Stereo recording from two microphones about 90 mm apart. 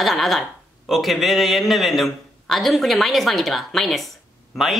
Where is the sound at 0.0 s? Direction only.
Centre (ahead or behind).